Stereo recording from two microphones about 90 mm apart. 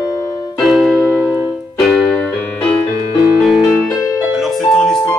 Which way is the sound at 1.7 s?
5° left (ahead or behind).